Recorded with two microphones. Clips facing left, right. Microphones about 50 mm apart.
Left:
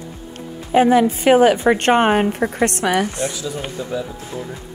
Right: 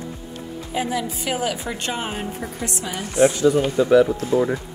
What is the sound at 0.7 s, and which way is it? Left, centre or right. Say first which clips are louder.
A woman's voice: left 12 dB; left.